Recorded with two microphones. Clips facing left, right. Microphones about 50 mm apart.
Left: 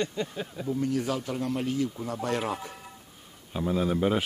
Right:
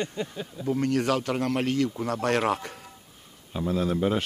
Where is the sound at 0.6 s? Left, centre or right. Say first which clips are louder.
Right 4 dB; right.